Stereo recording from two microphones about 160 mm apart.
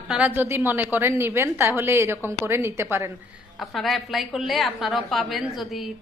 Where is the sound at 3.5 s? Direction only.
Centre (ahead or behind).